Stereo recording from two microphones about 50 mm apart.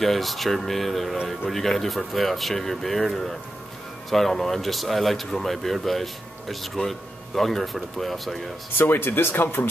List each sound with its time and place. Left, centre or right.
0.0 s speech: centre
1.1 s speech: centre
1.5 s speech: centre
8.7 s speech: left